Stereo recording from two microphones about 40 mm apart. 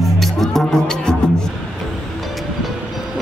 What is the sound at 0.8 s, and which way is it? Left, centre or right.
Music, centre.